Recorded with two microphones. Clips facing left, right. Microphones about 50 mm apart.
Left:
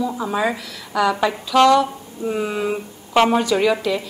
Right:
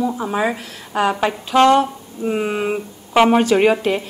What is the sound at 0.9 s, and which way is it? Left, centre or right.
A woman's voice, right.